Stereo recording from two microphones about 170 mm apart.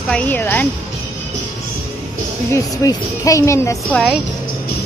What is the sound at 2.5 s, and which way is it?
Speech, 20° left (ahead or behind).